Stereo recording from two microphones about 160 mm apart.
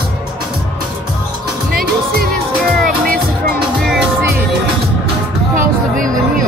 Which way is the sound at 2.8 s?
65° right (ahead or behind).